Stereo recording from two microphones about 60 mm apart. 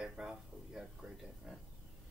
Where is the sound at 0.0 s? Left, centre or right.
Centre.